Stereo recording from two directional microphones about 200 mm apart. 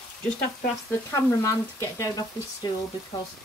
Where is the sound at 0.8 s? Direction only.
15° left (ahead or behind).